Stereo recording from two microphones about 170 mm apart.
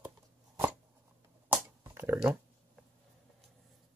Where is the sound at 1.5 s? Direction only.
10° right (ahead or behind).